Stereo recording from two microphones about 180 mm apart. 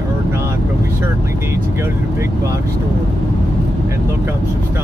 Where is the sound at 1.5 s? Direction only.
15° right (ahead or behind).